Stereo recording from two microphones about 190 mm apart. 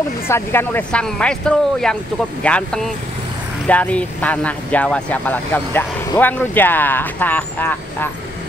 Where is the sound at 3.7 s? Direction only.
5° left (ahead or behind).